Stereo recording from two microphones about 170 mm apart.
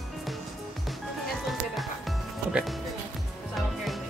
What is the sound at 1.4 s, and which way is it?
Music, centre (ahead or behind).